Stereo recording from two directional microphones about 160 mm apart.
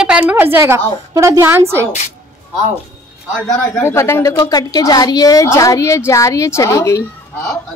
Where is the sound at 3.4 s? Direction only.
15° left (ahead or behind).